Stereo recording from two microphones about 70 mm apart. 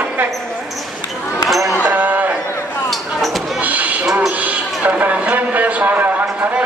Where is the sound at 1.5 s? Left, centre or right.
Centre.